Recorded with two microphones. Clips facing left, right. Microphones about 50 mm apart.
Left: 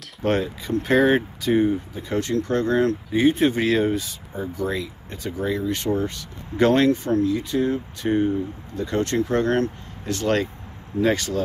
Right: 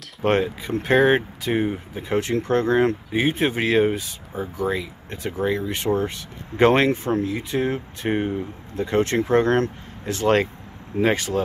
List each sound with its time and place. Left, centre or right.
0.2 s speech: centre
1.5 s speech: right
5.4 s speech: right